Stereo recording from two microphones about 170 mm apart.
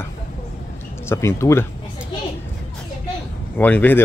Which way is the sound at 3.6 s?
10° left (ahead or behind).